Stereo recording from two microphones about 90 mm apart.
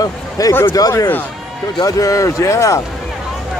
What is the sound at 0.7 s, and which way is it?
Speech, 45° left (ahead or behind).